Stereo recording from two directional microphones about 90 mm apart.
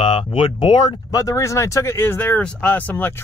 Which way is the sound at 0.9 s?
40° left (ahead or behind).